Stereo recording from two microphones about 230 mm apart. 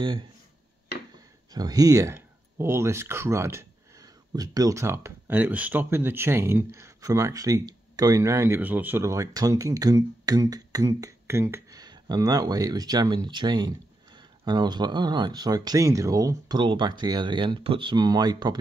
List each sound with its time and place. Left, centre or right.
1.5 s speech: centre